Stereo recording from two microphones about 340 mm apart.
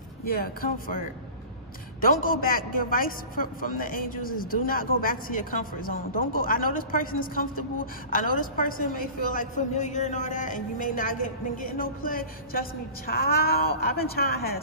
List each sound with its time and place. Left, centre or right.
0.2 s a man's voice: left